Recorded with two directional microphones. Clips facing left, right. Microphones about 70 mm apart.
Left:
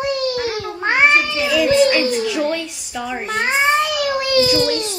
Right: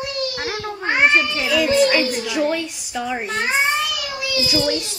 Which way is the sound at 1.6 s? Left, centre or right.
Right.